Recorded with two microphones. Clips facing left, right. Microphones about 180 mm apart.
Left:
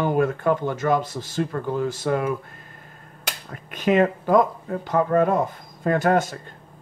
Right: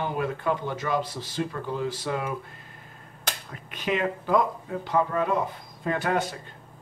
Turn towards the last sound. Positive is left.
turn(degrees=45)  # may be behind; listen again after turning